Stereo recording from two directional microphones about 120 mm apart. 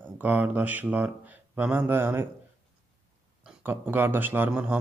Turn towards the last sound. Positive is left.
turn(degrees=-15)  # may be behind; listen again after turning